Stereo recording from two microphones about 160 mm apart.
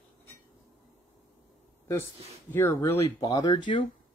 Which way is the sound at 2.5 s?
15° left (ahead or behind).